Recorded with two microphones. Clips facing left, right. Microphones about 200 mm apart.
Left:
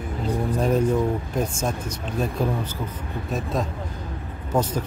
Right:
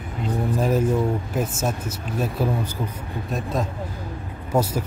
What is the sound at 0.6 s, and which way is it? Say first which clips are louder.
Speech: even; 5° right (ahead or behind).